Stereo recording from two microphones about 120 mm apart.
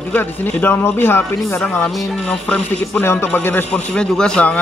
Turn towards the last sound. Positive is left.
turn(degrees=10)  # may be behind; listen again after turning